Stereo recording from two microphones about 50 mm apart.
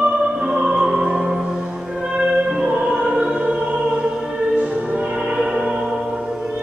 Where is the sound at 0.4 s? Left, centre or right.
Centre.